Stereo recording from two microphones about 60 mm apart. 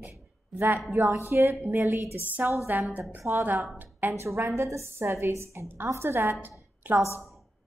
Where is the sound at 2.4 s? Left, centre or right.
Right.